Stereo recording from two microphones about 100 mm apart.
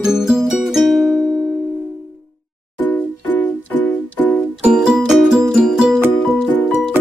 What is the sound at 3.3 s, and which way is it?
Music, 15° left (ahead or behind).